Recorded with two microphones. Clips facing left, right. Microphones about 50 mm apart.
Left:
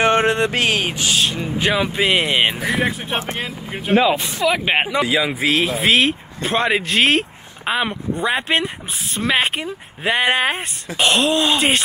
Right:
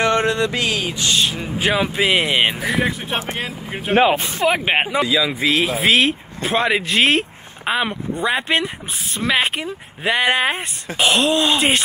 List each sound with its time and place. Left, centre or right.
0.0 s mantra: left
1.6 s speech: centre
3.9 s speech: right
4.6 s speech: centre
5.0 s a man's voice: left
5.5 s speech: centre